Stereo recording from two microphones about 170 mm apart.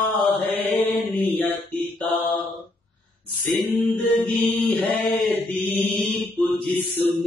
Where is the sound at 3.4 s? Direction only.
Centre (ahead or behind).